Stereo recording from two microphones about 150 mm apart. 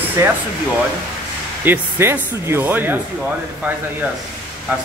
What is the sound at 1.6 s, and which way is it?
Speech, 15° right (ahead or behind).